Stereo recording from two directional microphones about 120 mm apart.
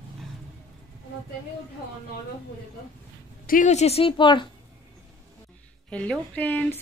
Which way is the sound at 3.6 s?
70° left (ahead or behind).